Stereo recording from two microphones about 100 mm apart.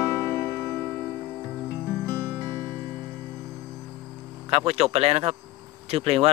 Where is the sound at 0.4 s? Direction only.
30° left (ahead or behind).